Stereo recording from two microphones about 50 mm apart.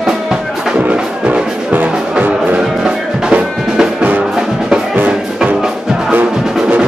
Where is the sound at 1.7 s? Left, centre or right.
Right.